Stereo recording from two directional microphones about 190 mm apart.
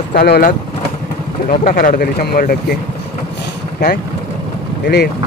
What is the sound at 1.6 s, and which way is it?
Speech, 50° left (ahead or behind).